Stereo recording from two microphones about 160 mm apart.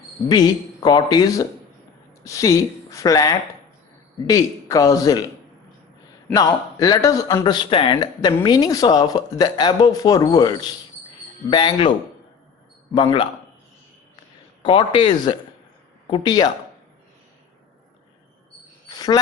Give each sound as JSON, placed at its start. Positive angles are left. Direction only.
{"t": 0.3, "sound": "speech", "side_deg": 25}
{"t": 6.3, "sound": "a man's voice", "side_deg": 25}
{"t": 12.9, "sound": "a man's voice", "side_deg": 30}
{"t": 14.6, "sound": "a man's voice", "side_deg": 30}
{"t": 18.9, "sound": "a sound", "side_deg": 25}